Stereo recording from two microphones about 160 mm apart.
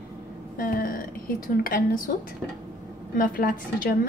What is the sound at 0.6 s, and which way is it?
A woman's voice, 60° left (ahead or behind).